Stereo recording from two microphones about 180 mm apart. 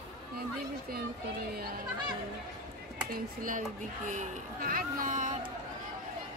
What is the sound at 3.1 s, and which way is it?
Speech, 50° right (ahead or behind).